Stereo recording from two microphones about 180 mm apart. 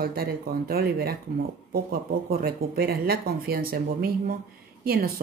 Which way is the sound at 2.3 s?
60° right (ahead or behind).